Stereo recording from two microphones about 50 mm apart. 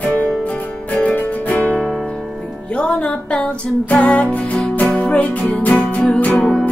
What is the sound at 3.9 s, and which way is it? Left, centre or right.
Music, left.